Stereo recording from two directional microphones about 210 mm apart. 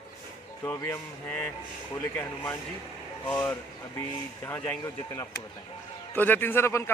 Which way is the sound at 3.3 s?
5° left (ahead or behind).